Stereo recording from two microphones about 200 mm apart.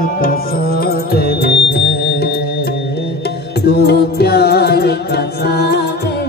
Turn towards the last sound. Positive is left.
turn(degrees=55)  # may be behind; listen again after turning